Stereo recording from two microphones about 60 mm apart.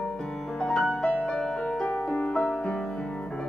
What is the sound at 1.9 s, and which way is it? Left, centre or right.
Music, left.